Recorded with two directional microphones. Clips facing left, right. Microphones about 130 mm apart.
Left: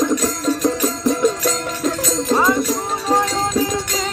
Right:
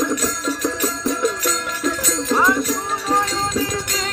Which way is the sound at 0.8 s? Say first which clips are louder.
Left 3 dB; 35° left (ahead or behind).